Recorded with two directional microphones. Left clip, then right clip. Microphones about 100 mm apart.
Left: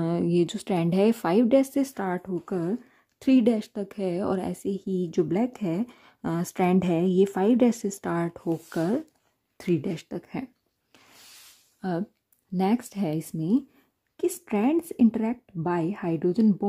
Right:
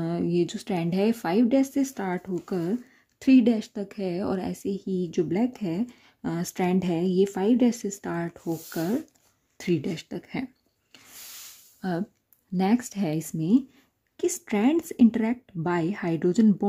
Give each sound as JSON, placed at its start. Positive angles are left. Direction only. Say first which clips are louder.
{"t": 0.0, "sound": "speech", "louder": "left 2 dB", "side_deg": 35}
{"t": 2.0, "sound": "speech", "louder": "left 1 dB", "side_deg": 30}
{"t": 11.8, "sound": "speech", "louder": "even", "side_deg": 20}
{"t": 16.2, "sound": "speech", "louder": "right 2 dB", "side_deg": 10}